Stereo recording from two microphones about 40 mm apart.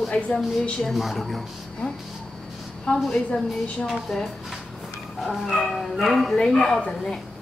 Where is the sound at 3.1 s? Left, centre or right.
Left.